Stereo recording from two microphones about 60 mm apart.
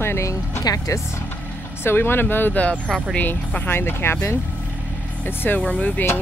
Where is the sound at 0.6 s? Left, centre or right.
Left.